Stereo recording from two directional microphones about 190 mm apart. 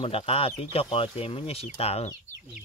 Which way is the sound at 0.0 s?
30° left (ahead or behind).